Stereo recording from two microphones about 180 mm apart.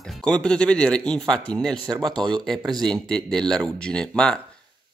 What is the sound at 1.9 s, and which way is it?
Speech, 25° right (ahead or behind).